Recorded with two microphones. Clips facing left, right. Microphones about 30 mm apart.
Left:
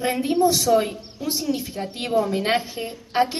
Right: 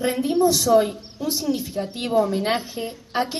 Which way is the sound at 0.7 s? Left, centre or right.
Centre.